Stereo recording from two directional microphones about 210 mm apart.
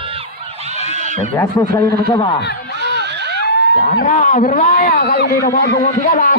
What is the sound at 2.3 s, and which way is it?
Heart sounds, 50° left (ahead or behind).